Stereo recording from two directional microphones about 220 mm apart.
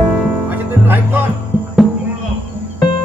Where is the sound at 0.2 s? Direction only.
10° right (ahead or behind).